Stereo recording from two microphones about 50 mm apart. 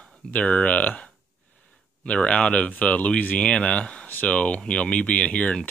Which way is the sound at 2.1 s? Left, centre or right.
Left.